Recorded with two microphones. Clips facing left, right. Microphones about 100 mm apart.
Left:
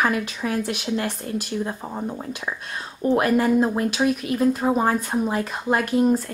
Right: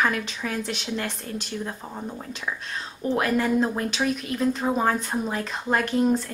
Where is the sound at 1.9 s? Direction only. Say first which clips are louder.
Left 5 dB; 20° left (ahead or behind).